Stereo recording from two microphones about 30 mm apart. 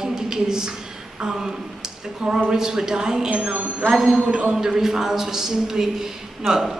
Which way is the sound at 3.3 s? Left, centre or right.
Right.